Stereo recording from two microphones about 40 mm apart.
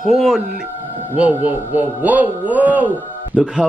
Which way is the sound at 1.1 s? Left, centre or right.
Right.